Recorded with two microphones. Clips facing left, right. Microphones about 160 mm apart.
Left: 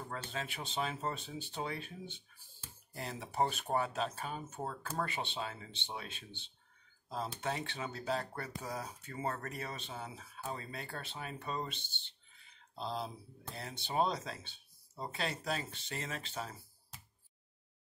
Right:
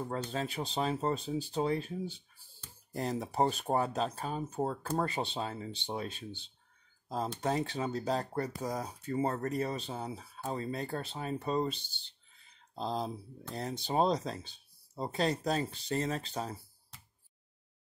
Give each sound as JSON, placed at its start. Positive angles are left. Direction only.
{"t": 0.1, "sound": "speech", "side_deg": -40}